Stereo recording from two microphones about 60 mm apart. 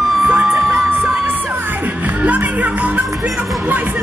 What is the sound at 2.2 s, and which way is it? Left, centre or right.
Music, right.